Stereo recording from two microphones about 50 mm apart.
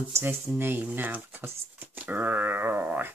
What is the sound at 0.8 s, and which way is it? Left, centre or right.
Speech, right.